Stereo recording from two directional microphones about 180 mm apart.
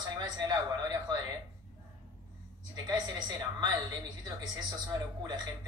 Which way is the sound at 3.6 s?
20° right (ahead or behind).